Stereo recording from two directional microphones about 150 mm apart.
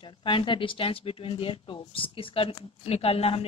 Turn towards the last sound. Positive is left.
turn(degrees=40)  # may be behind; listen again after turning